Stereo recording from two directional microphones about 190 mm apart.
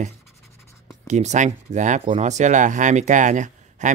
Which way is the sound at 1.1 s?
40° right (ahead or behind).